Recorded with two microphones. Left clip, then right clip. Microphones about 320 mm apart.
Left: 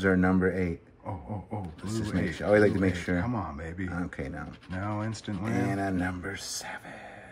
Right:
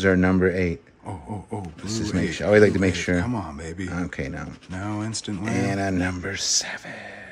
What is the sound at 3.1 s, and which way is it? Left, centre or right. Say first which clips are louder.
Speech: right 5 dB; centre.